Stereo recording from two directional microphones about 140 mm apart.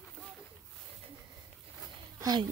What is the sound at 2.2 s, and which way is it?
Speech, 30° right (ahead or behind).